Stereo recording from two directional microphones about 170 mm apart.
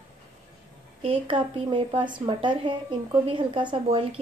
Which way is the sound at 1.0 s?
30° right (ahead or behind).